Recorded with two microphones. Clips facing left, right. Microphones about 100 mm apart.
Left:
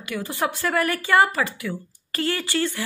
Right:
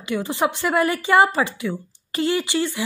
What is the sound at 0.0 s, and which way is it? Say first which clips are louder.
A woman's voice: right 4 dB; 25° right (ahead or behind).